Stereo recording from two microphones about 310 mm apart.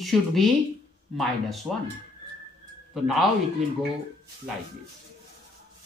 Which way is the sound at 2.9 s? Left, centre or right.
Centre.